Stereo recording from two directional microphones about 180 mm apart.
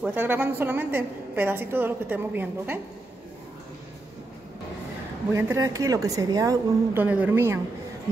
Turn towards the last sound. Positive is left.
turn(degrees=-15)  # may be behind; listen again after turning